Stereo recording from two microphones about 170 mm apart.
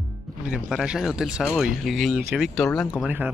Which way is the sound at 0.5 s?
5° right (ahead or behind).